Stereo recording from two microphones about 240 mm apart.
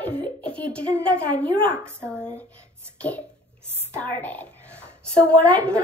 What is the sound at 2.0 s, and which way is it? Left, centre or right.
Speech, centre.